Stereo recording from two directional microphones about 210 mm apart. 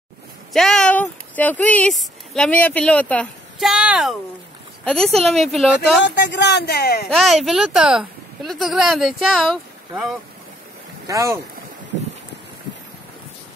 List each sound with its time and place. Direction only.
0.5 s speech: centre (ahead or behind)
6.0 s speech: 55° left (ahead or behind)
7.1 s speech: centre (ahead or behind)
11.1 s speech: 15° right (ahead or behind)